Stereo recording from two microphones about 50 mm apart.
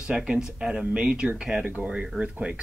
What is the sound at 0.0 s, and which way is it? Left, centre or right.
Speech, centre.